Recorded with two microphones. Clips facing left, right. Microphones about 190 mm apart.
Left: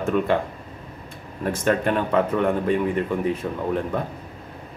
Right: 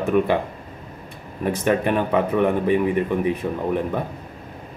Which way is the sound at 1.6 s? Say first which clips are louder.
Right 1 dB; 10° right (ahead or behind).